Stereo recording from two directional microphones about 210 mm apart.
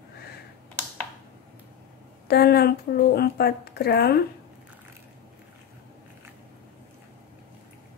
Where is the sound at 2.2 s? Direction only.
50° left (ahead or behind).